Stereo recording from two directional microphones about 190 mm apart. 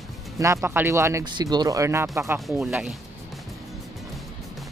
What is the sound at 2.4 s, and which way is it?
Speech, 5° right (ahead or behind).